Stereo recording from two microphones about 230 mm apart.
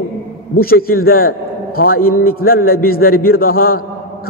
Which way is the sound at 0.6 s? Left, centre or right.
Left.